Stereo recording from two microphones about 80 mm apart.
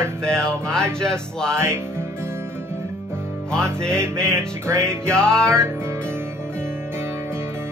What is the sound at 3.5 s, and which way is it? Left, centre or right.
Speech, centre.